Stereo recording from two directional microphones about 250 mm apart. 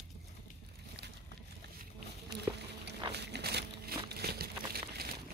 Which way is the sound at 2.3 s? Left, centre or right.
Right.